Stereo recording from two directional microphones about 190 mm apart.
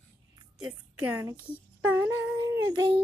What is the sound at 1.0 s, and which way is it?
Child singing, 10° right (ahead or behind).